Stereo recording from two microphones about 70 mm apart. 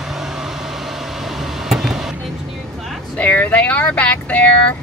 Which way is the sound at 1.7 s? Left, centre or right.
Centre.